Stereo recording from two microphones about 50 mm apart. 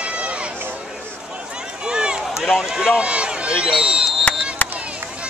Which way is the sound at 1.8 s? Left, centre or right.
Centre.